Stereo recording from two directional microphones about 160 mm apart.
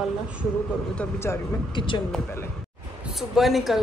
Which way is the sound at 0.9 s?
10° left (ahead or behind).